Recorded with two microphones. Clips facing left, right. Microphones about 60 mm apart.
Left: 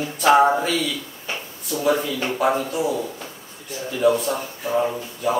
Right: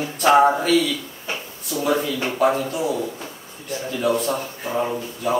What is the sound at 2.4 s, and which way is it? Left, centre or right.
Speech, centre.